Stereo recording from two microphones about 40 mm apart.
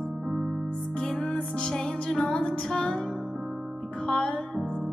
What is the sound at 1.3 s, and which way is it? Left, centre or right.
Music, centre.